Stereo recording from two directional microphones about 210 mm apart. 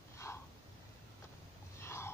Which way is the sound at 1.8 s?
10° left (ahead or behind).